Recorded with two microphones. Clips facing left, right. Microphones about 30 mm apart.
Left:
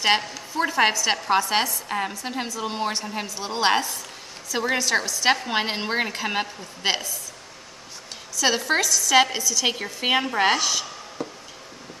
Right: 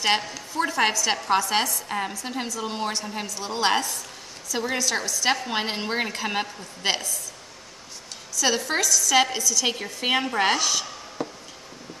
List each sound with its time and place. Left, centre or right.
0.0 s a woman's voice: centre
8.4 s a woman's voice: centre
11.2 s a sound: centre